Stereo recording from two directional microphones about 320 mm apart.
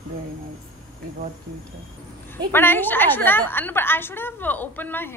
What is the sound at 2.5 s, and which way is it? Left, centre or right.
A woman's voice, centre.